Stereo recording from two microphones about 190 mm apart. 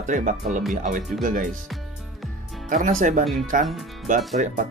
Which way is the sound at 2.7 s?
40° right (ahead or behind).